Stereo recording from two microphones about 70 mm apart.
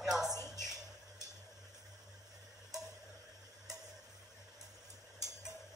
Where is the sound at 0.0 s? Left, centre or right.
Centre.